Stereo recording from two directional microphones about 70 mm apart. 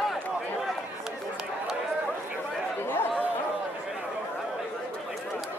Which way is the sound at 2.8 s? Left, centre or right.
Left.